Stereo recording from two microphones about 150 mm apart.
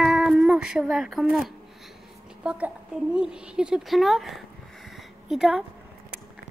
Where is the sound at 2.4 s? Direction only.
10° right (ahead or behind).